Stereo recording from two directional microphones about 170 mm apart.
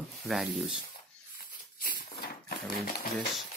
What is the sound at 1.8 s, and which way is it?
Dog, 60° left (ahead or behind).